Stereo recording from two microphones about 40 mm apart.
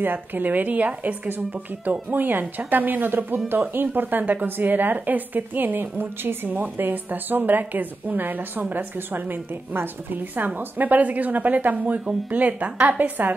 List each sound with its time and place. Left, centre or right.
0.0 s a woman's voice: right
1.3 s a woman's voice: right
4.2 s a woman's voice: right
4.5 s a woman's voice: right